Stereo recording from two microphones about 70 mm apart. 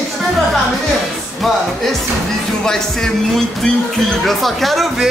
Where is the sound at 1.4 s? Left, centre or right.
Centre.